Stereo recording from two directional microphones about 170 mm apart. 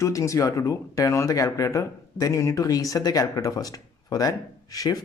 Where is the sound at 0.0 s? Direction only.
20° left (ahead or behind).